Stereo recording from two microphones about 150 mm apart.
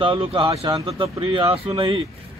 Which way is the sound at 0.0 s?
35° right (ahead or behind).